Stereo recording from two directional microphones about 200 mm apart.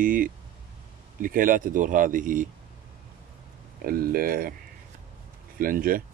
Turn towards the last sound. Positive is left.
turn(degrees=-45)  # may be behind; listen again after turning